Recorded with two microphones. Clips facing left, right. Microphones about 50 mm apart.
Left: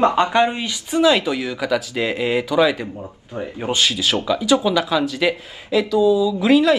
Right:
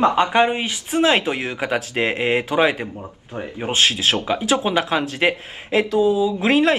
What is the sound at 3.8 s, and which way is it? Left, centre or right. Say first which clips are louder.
Speech: right 2 dB; right.